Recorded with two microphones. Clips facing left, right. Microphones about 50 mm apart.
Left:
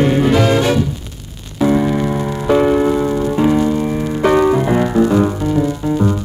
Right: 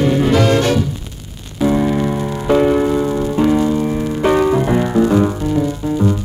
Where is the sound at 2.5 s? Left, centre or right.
Centre.